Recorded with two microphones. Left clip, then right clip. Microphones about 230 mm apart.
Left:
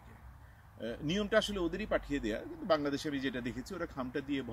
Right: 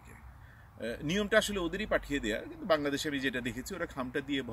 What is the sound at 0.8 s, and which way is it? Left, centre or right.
Speech, centre.